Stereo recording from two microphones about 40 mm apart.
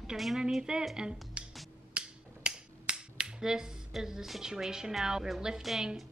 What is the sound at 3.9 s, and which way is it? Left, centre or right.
A woman's voice, centre.